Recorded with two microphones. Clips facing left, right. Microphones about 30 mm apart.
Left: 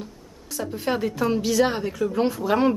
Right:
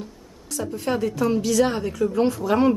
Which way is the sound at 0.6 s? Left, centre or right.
Centre.